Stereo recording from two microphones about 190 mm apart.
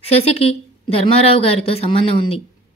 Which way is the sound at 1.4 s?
30° left (ahead or behind).